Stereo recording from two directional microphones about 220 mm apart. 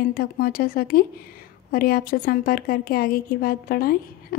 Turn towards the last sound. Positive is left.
turn(degrees=45)  # may be behind; listen again after turning